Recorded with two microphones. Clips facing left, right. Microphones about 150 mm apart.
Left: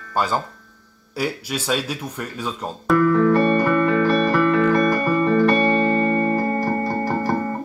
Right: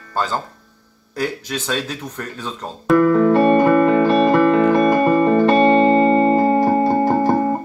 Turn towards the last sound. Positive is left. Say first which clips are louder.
# right 6 dB
turn(degrees=-25)  # may be behind; listen again after turning